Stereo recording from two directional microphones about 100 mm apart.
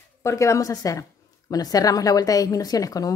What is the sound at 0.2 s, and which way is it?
A woman's voice, 30° left (ahead or behind).